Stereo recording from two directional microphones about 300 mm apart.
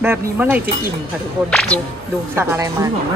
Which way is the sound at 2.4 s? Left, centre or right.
Centre.